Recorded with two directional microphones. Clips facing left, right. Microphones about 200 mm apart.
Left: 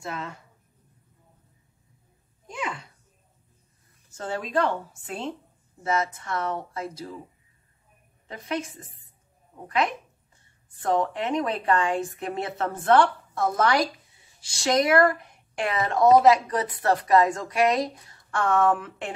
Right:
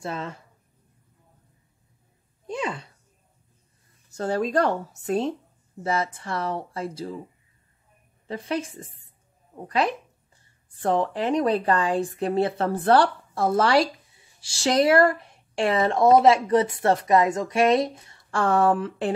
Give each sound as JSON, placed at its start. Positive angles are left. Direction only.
{"t": 0.0, "sound": "speech", "side_deg": -30}
{"t": 2.4, "sound": "a sound", "side_deg": -35}
{"t": 4.1, "sound": "speech", "side_deg": -40}
{"t": 8.3, "sound": "speech", "side_deg": -30}